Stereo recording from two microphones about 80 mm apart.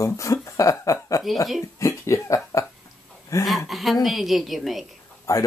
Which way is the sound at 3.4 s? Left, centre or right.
Centre.